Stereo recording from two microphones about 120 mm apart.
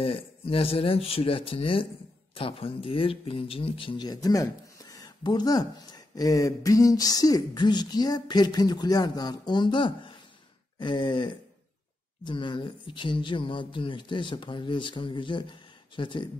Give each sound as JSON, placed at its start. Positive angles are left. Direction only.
{"t": 0.0, "sound": "speech", "side_deg": 50}